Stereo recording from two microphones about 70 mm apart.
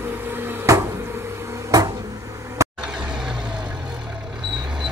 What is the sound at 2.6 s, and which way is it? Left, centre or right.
Vehicle, right.